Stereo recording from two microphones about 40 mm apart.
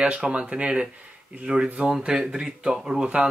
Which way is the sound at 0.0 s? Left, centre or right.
Right.